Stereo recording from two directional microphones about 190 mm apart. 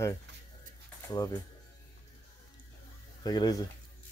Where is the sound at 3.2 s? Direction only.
20° left (ahead or behind).